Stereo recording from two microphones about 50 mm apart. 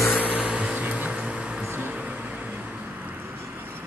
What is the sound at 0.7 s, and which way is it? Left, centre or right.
Vehicle, right.